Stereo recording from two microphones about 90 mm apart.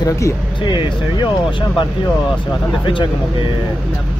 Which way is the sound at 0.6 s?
60° left (ahead or behind).